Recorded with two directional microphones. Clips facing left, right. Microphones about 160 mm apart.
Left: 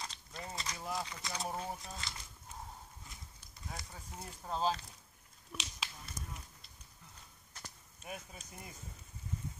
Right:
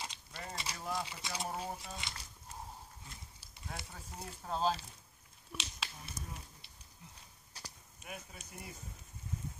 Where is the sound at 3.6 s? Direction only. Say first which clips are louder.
Right 1 dB; centre (ahead or behind).